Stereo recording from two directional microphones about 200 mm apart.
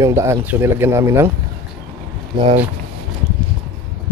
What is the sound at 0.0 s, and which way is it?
Speech, 15° right (ahead or behind).